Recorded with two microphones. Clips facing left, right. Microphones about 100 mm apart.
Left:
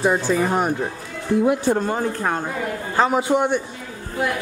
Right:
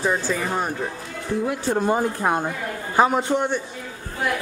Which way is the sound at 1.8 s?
10° right (ahead or behind).